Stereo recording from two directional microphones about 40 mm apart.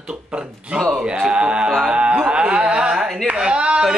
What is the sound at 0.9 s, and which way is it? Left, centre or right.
Speech, right.